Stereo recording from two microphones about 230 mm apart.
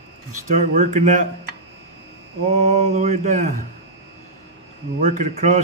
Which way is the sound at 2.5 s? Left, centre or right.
Right.